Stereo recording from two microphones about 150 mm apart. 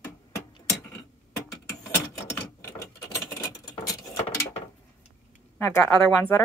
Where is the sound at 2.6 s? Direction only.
20° left (ahead or behind).